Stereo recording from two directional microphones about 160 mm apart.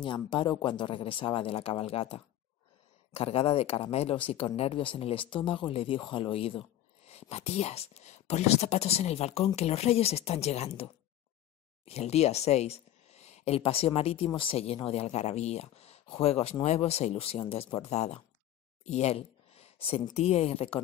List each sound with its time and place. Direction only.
0.0 s speech: 30° left (ahead or behind)
18.9 s a sound: 40° left (ahead or behind)
20.2 s speech: 40° left (ahead or behind)